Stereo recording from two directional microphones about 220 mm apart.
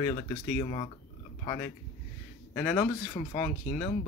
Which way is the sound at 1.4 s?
15° left (ahead or behind).